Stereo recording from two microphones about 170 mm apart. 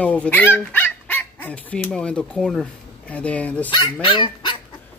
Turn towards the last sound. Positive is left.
turn(degrees=30)  # may be behind; listen again after turning